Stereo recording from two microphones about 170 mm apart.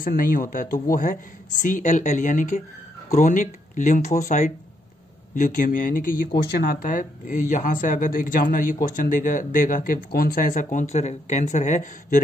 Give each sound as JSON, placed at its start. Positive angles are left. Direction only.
{"t": 0.0, "sound": "speech", "side_deg": 55}